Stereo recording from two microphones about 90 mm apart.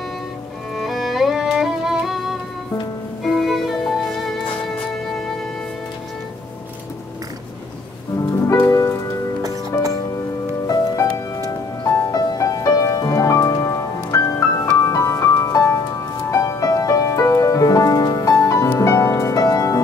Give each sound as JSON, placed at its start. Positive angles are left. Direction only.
{"t": 0.7, "sound": "music", "side_deg": 0}
{"t": 3.3, "sound": "music", "side_deg": 0}
{"t": 8.6, "sound": "music", "side_deg": 35}
{"t": 10.7, "sound": "music", "side_deg": 40}